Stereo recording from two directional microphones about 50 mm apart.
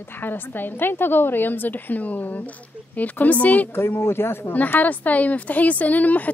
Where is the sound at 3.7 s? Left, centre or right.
Left.